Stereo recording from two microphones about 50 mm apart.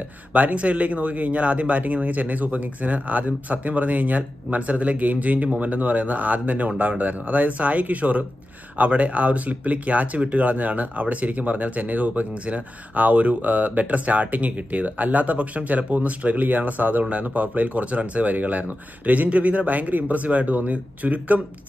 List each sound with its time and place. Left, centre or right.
0.3 s speech: right